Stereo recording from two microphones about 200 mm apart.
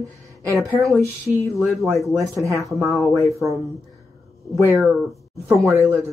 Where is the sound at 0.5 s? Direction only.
Centre (ahead or behind).